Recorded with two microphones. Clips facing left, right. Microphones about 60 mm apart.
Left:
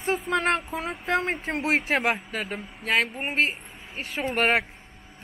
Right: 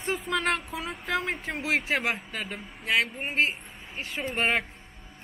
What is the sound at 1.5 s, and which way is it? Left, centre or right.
Speech, left.